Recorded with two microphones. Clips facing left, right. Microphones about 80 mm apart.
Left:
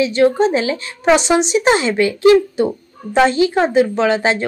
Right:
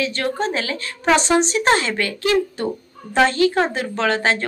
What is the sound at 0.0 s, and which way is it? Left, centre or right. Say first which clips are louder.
Speech: left 9 dB; centre.